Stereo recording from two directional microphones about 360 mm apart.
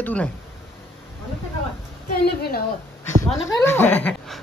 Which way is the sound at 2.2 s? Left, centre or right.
Left.